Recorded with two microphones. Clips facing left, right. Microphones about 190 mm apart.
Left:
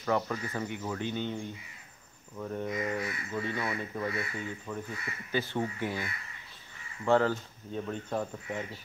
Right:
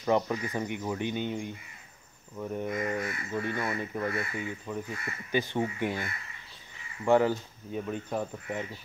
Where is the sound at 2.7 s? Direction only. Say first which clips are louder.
Right 1 dB; 50° right (ahead or behind).